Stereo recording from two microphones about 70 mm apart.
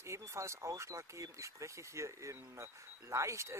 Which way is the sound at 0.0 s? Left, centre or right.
Right.